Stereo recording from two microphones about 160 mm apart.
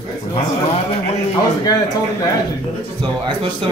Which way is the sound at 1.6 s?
25° left (ahead or behind).